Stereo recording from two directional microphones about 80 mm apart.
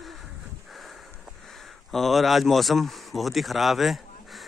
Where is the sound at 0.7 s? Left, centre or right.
Centre.